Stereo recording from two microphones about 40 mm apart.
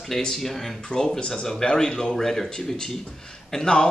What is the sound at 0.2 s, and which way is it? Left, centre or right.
Speech, centre.